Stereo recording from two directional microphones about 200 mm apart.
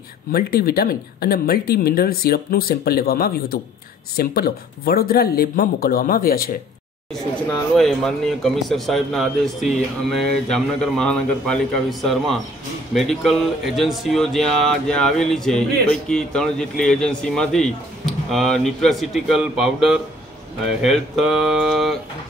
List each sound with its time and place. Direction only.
0.3 s speech: 50° left (ahead or behind)
7.7 s speech: centre (ahead or behind)